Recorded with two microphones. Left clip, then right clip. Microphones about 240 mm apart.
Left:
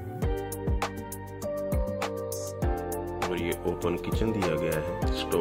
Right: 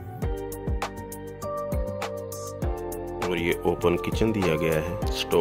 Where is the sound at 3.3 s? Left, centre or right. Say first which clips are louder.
Right 5 dB; right.